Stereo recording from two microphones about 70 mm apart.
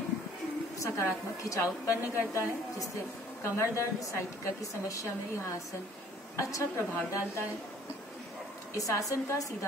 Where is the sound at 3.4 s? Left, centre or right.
Left.